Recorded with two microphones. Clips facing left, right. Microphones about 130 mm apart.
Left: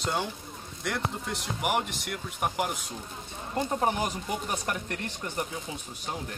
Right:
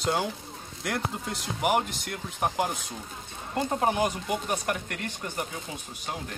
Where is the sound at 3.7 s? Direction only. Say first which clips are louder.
Right 4 dB; 15° right (ahead or behind).